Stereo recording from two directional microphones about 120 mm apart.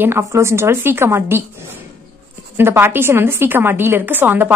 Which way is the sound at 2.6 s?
20° right (ahead or behind).